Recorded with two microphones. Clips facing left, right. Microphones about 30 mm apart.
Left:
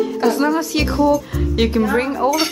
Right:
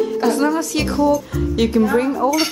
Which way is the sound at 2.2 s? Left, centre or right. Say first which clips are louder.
Even; centre.